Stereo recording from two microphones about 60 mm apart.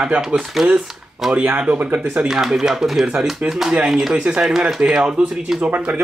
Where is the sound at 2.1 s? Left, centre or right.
Centre.